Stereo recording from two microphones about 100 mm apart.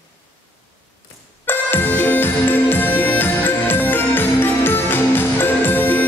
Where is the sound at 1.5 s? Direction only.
20° left (ahead or behind).